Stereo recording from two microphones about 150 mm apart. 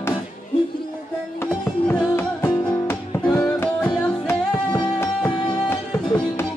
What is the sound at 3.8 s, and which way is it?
Music, 25° left (ahead or behind).